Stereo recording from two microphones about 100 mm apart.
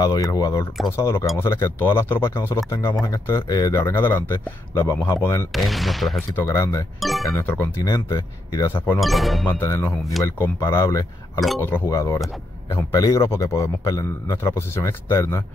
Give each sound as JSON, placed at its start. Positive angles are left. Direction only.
{"t": 0.0, "sound": "a man's voice", "side_deg": 35}
{"t": 0.9, "sound": "a man's voice", "side_deg": 25}
{"t": 5.5, "sound": "speech", "side_deg": 0}
{"t": 6.3, "sound": "speech", "side_deg": 30}
{"t": 7.0, "sound": "speech", "side_deg": 0}
{"t": 7.4, "sound": "speech", "side_deg": 20}
{"t": 7.8, "sound": "a man's voice", "side_deg": 40}
{"t": 8.7, "sound": "speech", "side_deg": 20}
{"t": 9.0, "sound": "speech", "side_deg": 0}
{"t": 9.6, "sound": "a man's voice", "side_deg": 25}
{"t": 11.3, "sound": "speech", "side_deg": 0}
{"t": 11.9, "sound": "a man's voice", "side_deg": 30}